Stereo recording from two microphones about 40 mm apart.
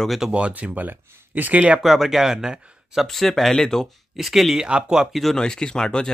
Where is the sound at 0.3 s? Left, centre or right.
Right.